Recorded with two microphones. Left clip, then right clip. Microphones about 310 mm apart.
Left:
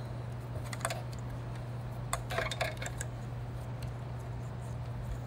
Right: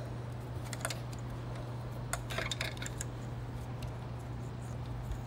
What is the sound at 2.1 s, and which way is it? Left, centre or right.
Tick-tock, centre.